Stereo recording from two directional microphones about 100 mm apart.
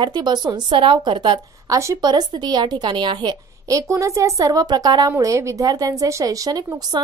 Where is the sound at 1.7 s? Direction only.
30° right (ahead or behind).